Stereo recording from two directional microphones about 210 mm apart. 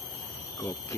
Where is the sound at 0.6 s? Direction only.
15° left (ahead or behind).